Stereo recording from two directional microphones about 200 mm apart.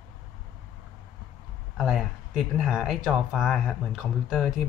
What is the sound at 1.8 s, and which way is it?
Speech, centre (ahead or behind).